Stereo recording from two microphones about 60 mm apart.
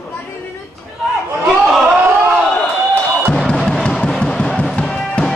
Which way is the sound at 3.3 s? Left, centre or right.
Centre.